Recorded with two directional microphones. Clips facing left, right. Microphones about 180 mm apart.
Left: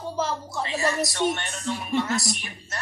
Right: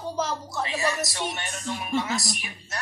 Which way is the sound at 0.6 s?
25° left (ahead or behind).